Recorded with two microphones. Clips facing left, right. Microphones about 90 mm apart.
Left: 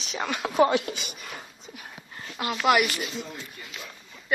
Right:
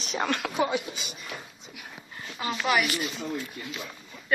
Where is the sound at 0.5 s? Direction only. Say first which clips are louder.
Left 6 dB; 65° left (ahead or behind).